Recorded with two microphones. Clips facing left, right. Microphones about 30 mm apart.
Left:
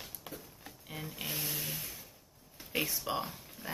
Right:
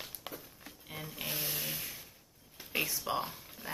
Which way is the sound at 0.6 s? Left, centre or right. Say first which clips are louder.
Left 2 dB; centre.